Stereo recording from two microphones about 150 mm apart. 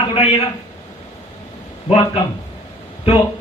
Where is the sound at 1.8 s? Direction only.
35° left (ahead or behind).